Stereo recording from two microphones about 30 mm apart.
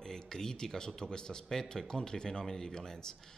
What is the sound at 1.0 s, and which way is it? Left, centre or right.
A man's voice, left.